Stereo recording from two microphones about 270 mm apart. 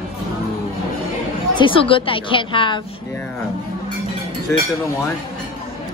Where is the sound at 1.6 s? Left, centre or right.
Centre.